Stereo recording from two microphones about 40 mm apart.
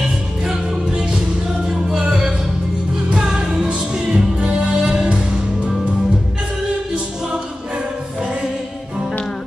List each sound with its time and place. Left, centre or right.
0.4 s music: centre